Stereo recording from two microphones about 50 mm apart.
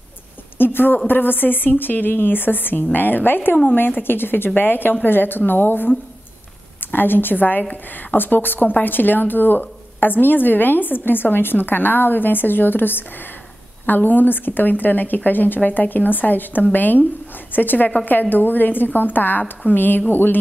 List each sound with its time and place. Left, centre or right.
0.6 s a woman's voice: left